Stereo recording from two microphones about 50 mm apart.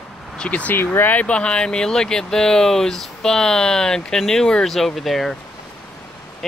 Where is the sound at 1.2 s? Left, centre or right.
Left; by 5.3 s centre.